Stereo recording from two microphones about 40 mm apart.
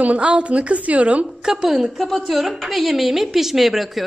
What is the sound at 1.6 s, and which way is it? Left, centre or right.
A woman's voice, centre.